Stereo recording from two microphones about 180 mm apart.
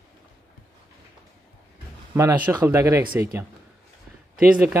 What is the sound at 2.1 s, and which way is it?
Speech, 15° right (ahead or behind).